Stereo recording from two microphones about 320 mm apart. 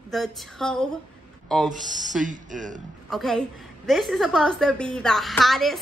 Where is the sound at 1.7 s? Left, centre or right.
Right.